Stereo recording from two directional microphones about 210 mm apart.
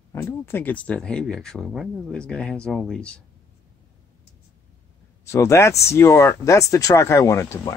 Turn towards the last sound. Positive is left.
turn(degrees=10)  # may be behind; listen again after turning